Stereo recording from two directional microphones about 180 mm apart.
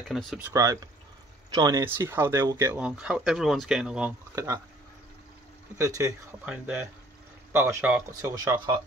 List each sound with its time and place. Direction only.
0.1 s speech: centre (ahead or behind)
0.5 s speech: 20° right (ahead or behind)
5.8 s speech: 20° right (ahead or behind)